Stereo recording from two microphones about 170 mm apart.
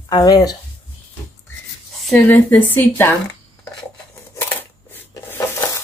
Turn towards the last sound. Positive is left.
turn(degrees=15)  # may be behind; listen again after turning